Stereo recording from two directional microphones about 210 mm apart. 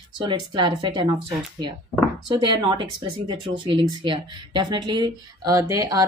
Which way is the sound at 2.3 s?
20° right (ahead or behind).